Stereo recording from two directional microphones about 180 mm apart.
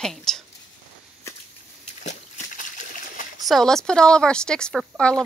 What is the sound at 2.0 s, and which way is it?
Water, 45° left (ahead or behind).